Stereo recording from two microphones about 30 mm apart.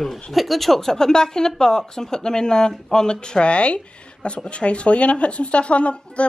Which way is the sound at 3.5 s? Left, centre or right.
Left.